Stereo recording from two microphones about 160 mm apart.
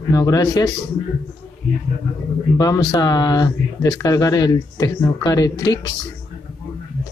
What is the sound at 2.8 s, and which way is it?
Speech, 25° left (ahead or behind).